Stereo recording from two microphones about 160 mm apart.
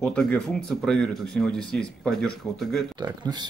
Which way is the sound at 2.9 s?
25° right (ahead or behind).